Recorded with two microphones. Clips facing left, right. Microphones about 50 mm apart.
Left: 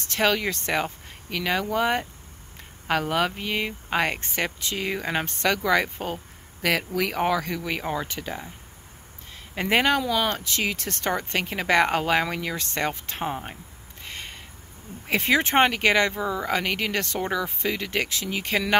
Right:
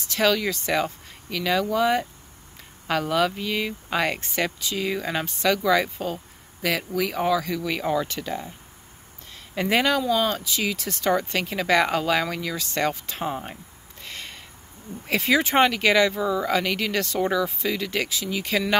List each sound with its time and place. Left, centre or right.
0.0 s speech: left; by 8.5 s centre
9.6 s speech: left
10.0 s speech: left
11.1 s speech: left
14.0 s a sound: left
15.0 s speech: left